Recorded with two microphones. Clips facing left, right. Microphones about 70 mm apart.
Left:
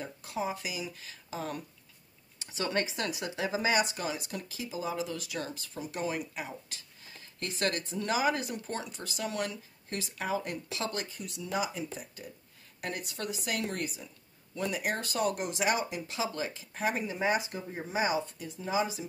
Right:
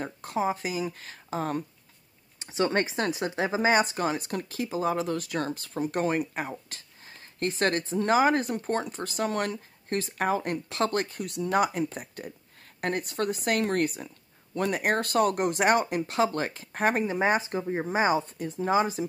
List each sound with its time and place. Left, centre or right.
0.0 s speech: right
2.3 s speech: right